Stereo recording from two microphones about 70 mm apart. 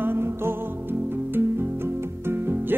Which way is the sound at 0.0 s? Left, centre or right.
Right.